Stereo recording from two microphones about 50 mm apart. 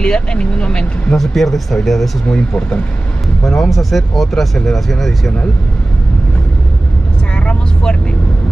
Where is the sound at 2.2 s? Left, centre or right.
Left.